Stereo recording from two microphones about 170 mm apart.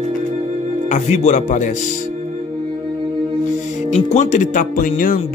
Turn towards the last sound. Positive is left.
turn(degrees=55)  # may be behind; listen again after turning